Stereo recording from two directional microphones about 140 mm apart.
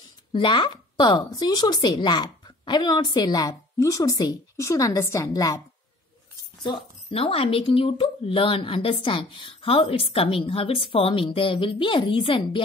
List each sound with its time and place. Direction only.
0.3 s speech: 35° left (ahead or behind)
6.6 s speech: 40° left (ahead or behind)